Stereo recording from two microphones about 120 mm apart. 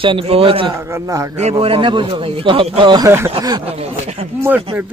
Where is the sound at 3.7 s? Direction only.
55° right (ahead or behind).